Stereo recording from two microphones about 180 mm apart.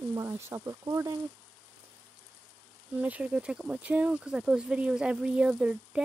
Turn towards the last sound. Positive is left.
turn(degrees=-5)  # may be behind; listen again after turning